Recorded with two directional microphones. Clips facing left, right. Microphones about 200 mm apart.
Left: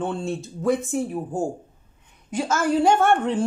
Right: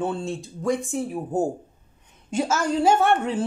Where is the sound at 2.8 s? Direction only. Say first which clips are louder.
Left 1 dB; 5° right (ahead or behind).